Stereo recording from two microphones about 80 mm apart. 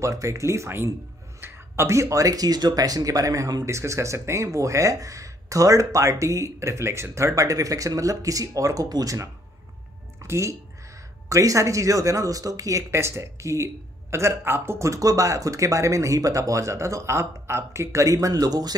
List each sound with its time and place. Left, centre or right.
0.0 s speech: right